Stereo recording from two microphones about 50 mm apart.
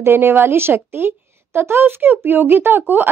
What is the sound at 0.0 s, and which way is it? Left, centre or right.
A woman's voice, right.